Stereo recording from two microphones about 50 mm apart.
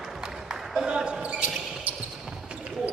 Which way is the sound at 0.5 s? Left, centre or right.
Centre.